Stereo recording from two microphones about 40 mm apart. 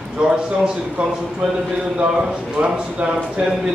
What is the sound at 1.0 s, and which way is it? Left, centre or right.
Speech, right.